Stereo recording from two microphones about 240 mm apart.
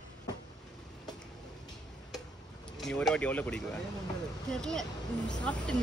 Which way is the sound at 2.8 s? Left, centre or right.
Centre.